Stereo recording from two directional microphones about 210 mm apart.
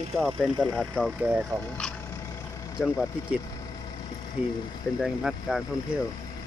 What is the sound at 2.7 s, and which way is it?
Speech, 5° right (ahead or behind).